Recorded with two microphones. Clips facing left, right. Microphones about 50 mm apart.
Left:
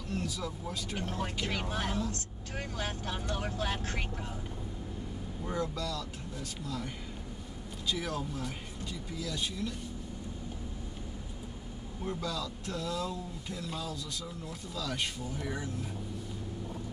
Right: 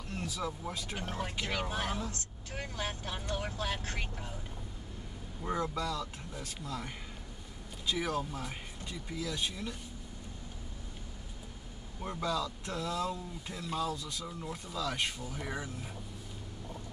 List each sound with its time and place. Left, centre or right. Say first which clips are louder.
0.2 s speech: even; centre
0.9 s speech: left 3 dB; centre
5.4 s speech: right 1 dB; centre
12.0 s speech: right 2 dB; centre